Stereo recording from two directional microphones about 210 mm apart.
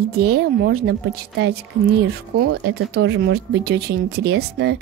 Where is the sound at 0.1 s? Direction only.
50° right (ahead or behind).